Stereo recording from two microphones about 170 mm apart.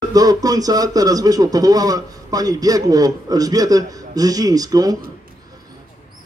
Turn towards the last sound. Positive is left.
turn(degrees=-20)  # may be behind; listen again after turning